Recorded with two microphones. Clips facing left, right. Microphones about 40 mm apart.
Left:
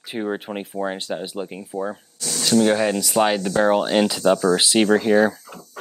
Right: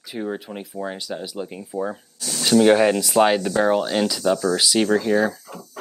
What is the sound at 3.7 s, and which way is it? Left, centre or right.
Speech, left.